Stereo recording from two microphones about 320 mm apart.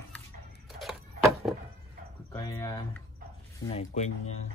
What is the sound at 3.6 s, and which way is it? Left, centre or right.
Speech, centre.